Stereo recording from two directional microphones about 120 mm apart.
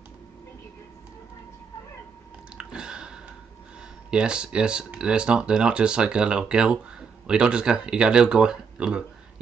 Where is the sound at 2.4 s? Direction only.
5° right (ahead or behind).